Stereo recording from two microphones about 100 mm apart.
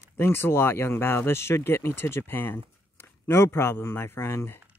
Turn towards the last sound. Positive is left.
turn(degrees=25)  # may be behind; listen again after turning